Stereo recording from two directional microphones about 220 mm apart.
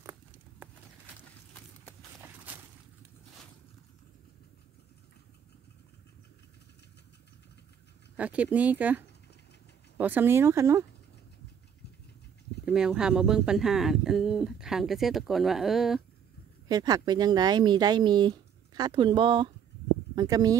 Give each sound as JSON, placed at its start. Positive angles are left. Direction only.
{"t": 2.0, "sound": "walk", "side_deg": -10}
{"t": 8.2, "sound": "speech", "side_deg": -5}
{"t": 12.6, "sound": "speech", "side_deg": -5}
{"t": 16.6, "sound": "speech", "side_deg": -15}